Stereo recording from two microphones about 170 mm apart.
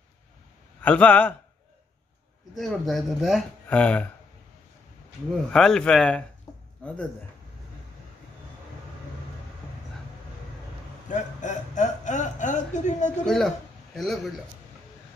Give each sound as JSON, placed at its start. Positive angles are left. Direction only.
{"t": 0.8, "sound": "a man's voice", "side_deg": 10}
{"t": 2.5, "sound": "speech", "side_deg": 0}
{"t": 5.5, "sound": "a man's voice", "side_deg": 5}
{"t": 11.1, "sound": "speech", "side_deg": 45}
{"t": 13.2, "sound": "speech", "side_deg": 0}